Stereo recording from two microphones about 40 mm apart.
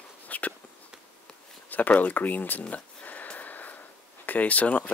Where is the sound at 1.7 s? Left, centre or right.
Left.